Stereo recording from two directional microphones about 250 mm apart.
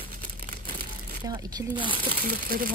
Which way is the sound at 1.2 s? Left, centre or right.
Centre.